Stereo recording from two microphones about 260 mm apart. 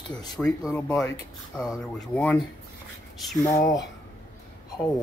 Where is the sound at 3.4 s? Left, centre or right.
Centre.